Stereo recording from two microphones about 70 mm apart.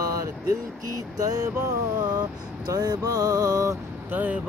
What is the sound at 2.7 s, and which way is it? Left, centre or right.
Mantra, right.